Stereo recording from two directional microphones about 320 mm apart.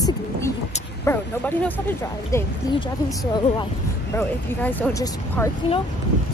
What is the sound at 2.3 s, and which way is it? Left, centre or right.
Speech, centre.